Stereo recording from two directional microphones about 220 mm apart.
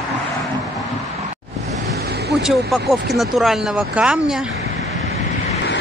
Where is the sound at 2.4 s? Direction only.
Centre (ahead or behind).